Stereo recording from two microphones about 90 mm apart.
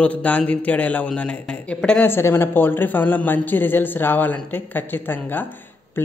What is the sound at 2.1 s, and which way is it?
A man's voice, 25° left (ahead or behind).